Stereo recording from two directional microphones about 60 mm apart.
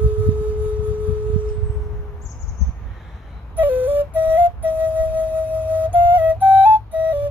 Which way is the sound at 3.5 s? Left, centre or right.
Right.